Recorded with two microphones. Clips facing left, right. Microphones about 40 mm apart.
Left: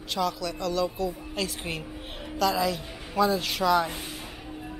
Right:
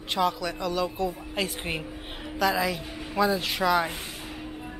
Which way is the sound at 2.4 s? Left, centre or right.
Centre.